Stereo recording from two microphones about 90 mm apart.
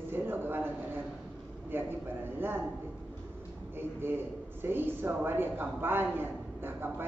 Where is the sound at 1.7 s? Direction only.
25° right (ahead or behind).